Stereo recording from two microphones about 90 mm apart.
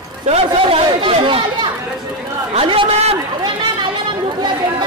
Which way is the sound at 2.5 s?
90° right.